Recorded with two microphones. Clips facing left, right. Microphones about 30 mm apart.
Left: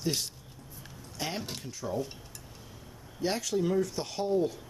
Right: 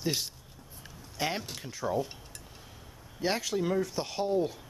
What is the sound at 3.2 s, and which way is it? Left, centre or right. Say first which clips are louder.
Speech: even; centre.